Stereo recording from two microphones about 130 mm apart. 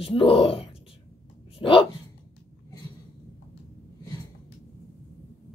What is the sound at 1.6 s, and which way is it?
Dog, 45° left (ahead or behind).